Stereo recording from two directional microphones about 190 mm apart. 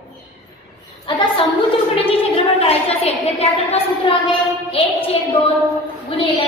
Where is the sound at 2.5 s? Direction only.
30° left (ahead or behind).